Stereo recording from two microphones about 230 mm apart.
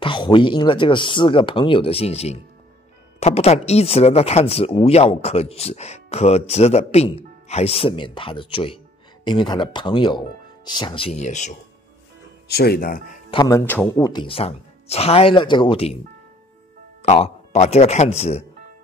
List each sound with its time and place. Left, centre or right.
0.0 s speech: left
12.4 s speech: left
13.3 s speech: centre
17.0 s speech: left